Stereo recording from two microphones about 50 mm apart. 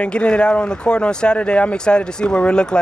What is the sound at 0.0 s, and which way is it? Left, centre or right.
Speech, left.